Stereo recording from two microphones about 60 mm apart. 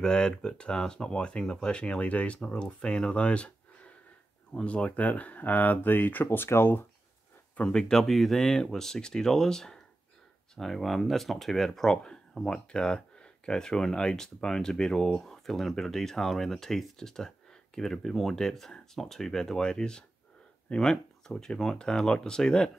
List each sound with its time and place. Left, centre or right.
0.0 s speech: centre; by 6.9 s left
7.7 s speech: centre